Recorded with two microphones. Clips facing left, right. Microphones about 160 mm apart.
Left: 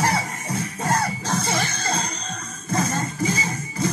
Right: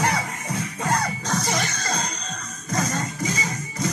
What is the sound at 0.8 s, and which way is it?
Music, 50° left (ahead or behind).